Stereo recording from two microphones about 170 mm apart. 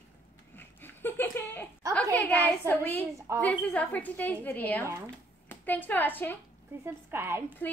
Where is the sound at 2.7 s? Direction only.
10° left (ahead or behind).